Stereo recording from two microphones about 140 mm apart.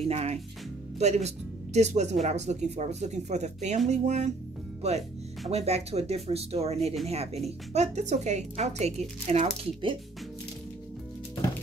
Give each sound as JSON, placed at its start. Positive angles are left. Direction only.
{"t": 0.0, "sound": "speech", "side_deg": -50}